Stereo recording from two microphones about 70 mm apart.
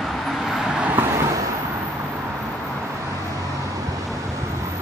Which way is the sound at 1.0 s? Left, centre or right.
Right.